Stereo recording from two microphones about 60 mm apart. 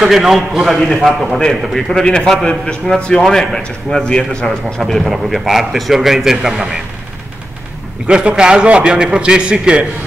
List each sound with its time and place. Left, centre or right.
0.0 s a man's voice: centre
5.0 s a man's voice: centre
8.1 s a man's voice: centre